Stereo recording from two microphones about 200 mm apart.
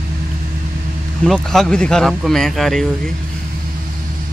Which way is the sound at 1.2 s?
Centre (ahead or behind).